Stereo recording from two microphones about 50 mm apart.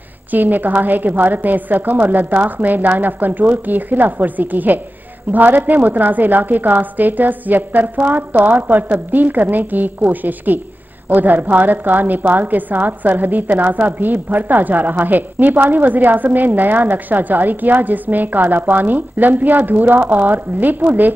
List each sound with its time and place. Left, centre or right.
0.3 s a woman's voice: right